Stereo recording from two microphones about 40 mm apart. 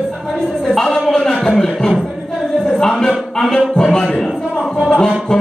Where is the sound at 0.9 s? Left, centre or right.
Centre.